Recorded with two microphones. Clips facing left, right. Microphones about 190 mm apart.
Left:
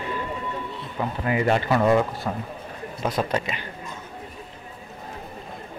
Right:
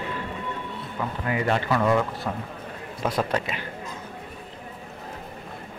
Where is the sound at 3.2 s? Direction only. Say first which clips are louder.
Left 1 dB; 5° left (ahead or behind).